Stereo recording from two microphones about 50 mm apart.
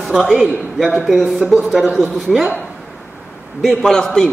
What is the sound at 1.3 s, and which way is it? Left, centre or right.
Speech, right.